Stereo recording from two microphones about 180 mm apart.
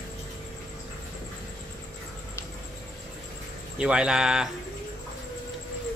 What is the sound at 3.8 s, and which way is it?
Speech, 5° right (ahead or behind).